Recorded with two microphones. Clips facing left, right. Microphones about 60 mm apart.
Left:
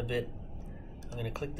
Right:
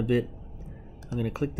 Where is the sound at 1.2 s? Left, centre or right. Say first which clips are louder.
Right 8 dB; right.